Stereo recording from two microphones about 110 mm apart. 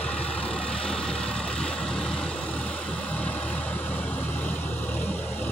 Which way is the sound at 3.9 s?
15° left (ahead or behind).